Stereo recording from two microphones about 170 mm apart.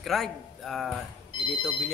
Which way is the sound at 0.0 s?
Centre (ahead or behind).